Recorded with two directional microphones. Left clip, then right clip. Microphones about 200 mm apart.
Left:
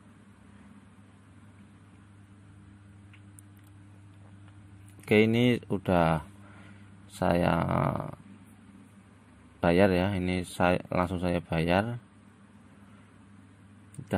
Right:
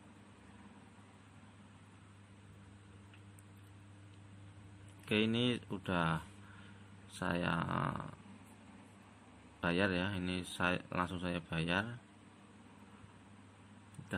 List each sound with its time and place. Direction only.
5.0 s speech: 40° left (ahead or behind)
9.6 s speech: 40° left (ahead or behind)